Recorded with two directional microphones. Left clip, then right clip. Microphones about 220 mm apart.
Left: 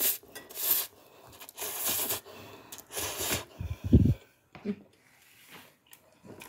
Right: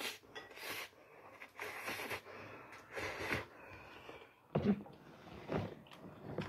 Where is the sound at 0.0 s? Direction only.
45° left (ahead or behind).